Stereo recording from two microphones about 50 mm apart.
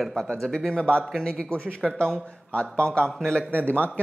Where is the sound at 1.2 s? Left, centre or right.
Left.